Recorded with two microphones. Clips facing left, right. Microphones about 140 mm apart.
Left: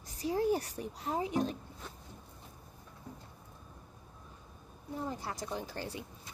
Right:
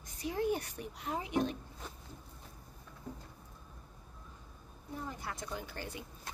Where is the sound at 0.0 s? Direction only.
35° left (ahead or behind).